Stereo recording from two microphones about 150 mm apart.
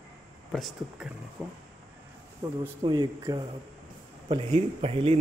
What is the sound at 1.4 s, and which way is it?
Speech, 10° right (ahead or behind).